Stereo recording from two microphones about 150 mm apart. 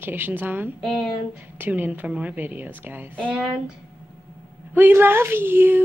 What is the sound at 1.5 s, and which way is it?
Speech, 10° right (ahead or behind).